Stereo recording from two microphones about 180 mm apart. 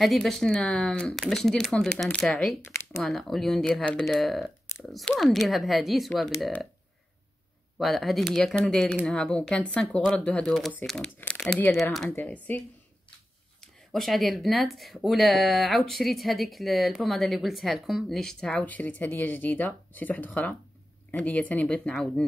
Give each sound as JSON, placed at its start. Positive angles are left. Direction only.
{"t": 0.0, "sound": "speech", "side_deg": 0}
{"t": 2.6, "sound": "a sound", "side_deg": 15}
{"t": 3.0, "sound": "speech", "side_deg": 0}
{"t": 7.7, "sound": "speech", "side_deg": 0}